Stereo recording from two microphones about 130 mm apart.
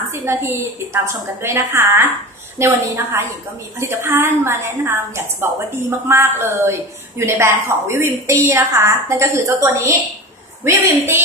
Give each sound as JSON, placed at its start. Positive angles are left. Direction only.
{"t": 0.2, "sound": "a woman's voice", "side_deg": -15}